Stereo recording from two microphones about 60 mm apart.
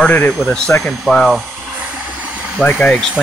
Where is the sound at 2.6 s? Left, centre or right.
Left.